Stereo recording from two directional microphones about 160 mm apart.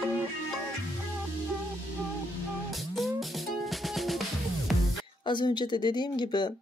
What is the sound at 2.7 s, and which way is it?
Music, centre (ahead or behind).